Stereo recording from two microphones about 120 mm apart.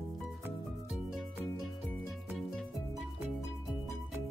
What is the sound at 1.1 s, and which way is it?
Music, centre (ahead or behind).